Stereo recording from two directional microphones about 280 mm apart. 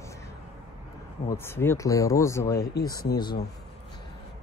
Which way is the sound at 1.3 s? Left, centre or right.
Centre.